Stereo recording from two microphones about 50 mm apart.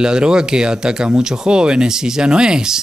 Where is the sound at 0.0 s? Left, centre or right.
Centre.